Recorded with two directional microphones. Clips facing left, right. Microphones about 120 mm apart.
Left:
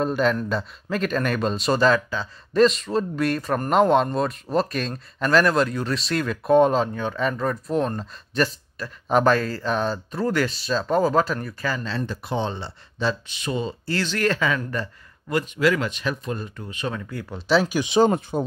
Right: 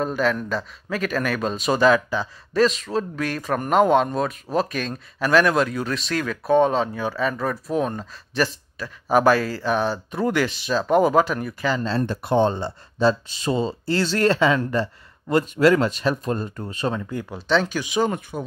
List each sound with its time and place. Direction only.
0.0 s speech: centre (ahead or behind)
2.5 s speech: centre (ahead or behind)
12.0 s speech: 50° right (ahead or behind)
17.0 s speech: 15° right (ahead or behind)
17.5 s speech: 10° left (ahead or behind)
17.8 s speech: 30° left (ahead or behind)